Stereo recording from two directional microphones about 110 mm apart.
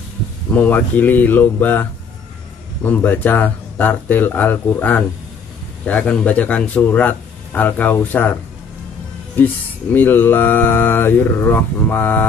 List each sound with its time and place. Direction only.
0.5 s speech: 15° left (ahead or behind)
9.9 s speech: 20° left (ahead or behind)